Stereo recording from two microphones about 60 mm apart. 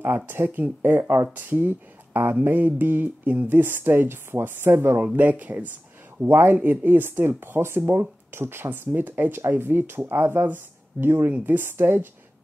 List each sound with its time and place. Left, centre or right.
0.3 s speech: right
5.0 s speech: right
6.1 s speech: right